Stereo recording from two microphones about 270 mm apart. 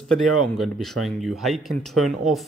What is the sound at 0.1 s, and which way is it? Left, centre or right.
Speech, centre.